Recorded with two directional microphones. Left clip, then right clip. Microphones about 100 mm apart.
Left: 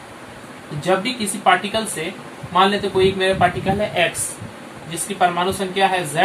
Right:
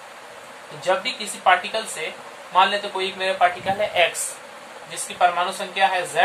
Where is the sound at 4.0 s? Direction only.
50° right (ahead or behind).